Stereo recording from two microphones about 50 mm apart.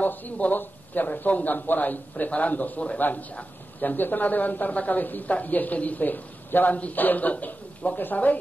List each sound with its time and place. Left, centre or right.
0.0 s a man's voice: left